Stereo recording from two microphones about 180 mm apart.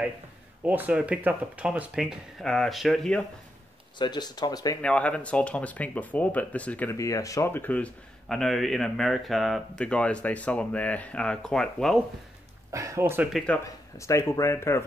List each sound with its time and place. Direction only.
0.7 s speech: 10° right (ahead or behind)
4.0 s speech: 25° left (ahead or behind)
4.8 s speech: 5° left (ahead or behind)
12.7 s speech: 15° right (ahead or behind)
13.9 s speech: 15° left (ahead or behind)